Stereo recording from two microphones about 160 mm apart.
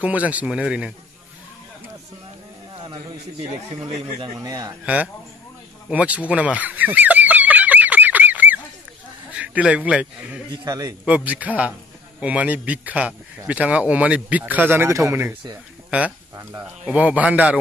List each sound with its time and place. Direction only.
0.0 s a man's voice: 10° right (ahead or behind)
2.8 s a sound: 30° right (ahead or behind)
4.2 s speech: 20° right (ahead or behind)
4.8 s a man's voice: 10° right (ahead or behind)
5.9 s fowl: 10° right (ahead or behind)
9.3 s a man's voice: 10° right (ahead or behind)
10.5 s speech: 20° right (ahead or behind)
11.1 s a man's voice: 10° right (ahead or behind)
16.8 s a man's voice: 10° right (ahead or behind)